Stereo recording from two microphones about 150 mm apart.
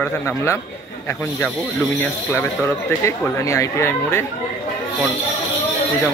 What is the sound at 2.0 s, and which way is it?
Speech, 15° left (ahead or behind).